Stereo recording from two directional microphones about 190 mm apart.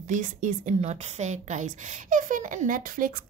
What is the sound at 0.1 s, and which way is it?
A woman's voice, 40° right (ahead or behind).